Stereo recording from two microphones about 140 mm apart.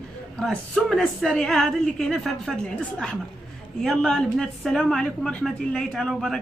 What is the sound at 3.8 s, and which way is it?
A woman's voice, 5° left (ahead or behind).